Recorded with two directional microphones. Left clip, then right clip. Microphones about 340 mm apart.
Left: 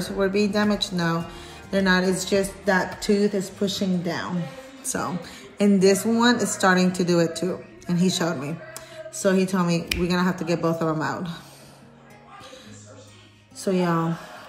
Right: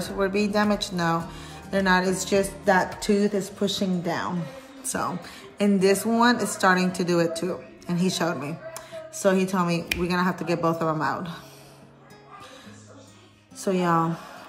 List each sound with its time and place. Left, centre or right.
0.0 s a woman's voice: centre
13.6 s speech: centre